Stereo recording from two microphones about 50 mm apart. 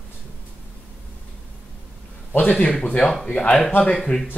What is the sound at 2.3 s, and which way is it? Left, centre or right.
Speech, left.